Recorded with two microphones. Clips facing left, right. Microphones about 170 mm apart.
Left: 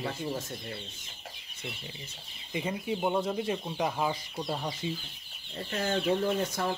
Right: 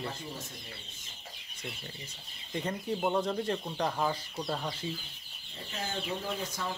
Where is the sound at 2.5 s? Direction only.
5° left (ahead or behind).